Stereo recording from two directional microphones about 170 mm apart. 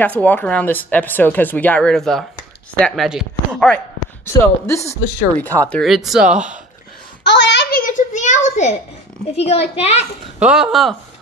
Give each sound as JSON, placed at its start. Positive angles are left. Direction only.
{"t": 0.0, "sound": "speech", "side_deg": 10}
{"t": 4.3, "sound": "speech", "side_deg": 15}
{"t": 5.7, "sound": "speech", "side_deg": 0}
{"t": 7.2, "sound": "a sound", "side_deg": 90}
{"t": 7.8, "sound": "a sound", "side_deg": 45}
{"t": 9.3, "sound": "a child's voice", "side_deg": 35}
{"t": 10.4, "sound": "speech", "side_deg": -5}